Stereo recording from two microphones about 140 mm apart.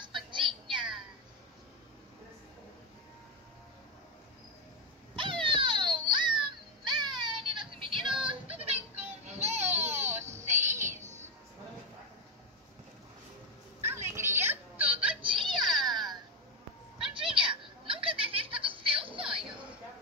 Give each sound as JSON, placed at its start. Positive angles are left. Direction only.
{"t": 0.0, "sound": "music", "side_deg": -35}
{"t": 5.1, "sound": "a sound", "side_deg": -35}
{"t": 7.0, "sound": "child singing", "side_deg": -35}
{"t": 9.2, "sound": "a sound", "side_deg": -55}
{"t": 9.9, "sound": "baby cry", "side_deg": -15}
{"t": 10.2, "sound": "child singing", "side_deg": -55}
{"t": 11.0, "sound": "music", "side_deg": -55}
{"t": 14.0, "sound": "whimper", "side_deg": -20}
{"t": 15.8, "sound": "baby cry", "side_deg": 0}
{"t": 17.1, "sound": "a sound", "side_deg": -40}